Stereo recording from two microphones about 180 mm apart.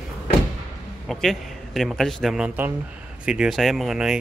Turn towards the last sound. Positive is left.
turn(degrees=-5)  # may be behind; listen again after turning